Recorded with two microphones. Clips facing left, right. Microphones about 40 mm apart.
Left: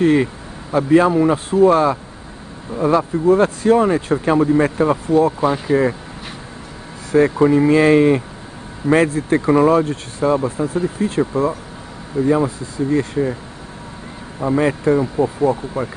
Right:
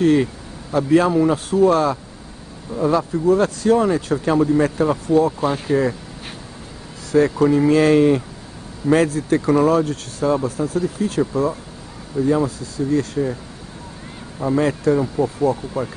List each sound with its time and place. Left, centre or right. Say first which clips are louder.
0.2 s speech: left 1 dB; left
7.1 s speech: left 2 dB; left
14.4 s speech: left 1 dB; centre